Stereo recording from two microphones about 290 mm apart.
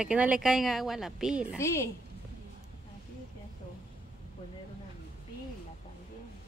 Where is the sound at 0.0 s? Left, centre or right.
Centre.